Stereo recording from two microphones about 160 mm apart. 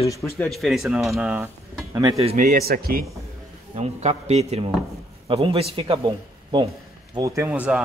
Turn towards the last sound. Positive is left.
turn(degrees=-5)  # may be behind; listen again after turning